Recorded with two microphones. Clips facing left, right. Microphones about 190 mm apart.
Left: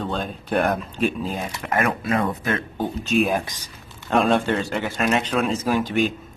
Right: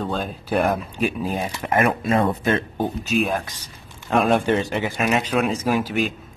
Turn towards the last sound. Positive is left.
turn(degrees=0)  # may be behind; listen again after turning